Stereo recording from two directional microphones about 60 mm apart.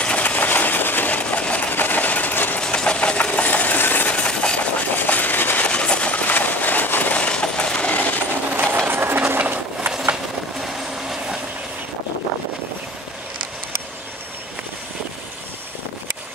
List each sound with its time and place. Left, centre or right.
0.0 s engine: left
2.6 s engine: centre; by 4.1 s left
4.1 s a sound: left
4.7 s train: left
5.7 s train: centre
8.6 s train: right
9.2 s sewing machine: right
10.6 s vehicle: centre